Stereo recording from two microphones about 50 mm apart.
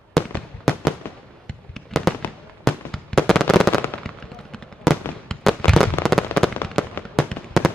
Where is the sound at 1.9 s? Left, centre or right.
Centre.